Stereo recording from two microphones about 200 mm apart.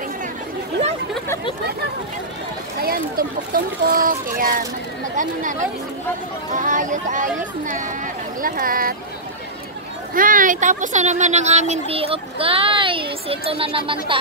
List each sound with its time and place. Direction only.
2.8 s speech: 45° right (ahead or behind)
5.1 s speech: 40° right (ahead or behind)
10.1 s a child's voice: 45° right (ahead or behind); by 14.2 s 25° right (ahead or behind)